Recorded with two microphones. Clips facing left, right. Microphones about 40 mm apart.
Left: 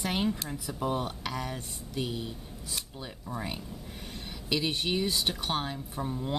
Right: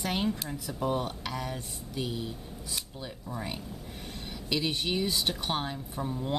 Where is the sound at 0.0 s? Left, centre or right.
Centre.